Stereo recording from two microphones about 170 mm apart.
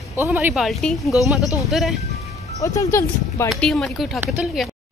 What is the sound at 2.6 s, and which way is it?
Speech, 20° left (ahead or behind).